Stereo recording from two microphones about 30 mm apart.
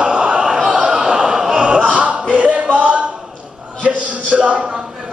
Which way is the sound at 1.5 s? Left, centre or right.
Right.